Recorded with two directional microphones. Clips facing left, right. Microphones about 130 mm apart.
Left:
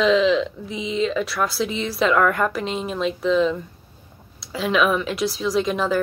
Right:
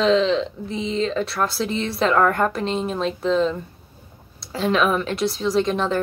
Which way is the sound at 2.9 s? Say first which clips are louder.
Left 3 dB; 35° right (ahead or behind).